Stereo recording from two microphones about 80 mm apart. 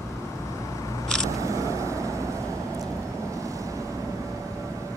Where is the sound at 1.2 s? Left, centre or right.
Right.